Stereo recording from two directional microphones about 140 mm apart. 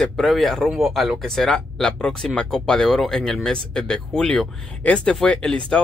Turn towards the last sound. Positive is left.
turn(degrees=5)  # may be behind; listen again after turning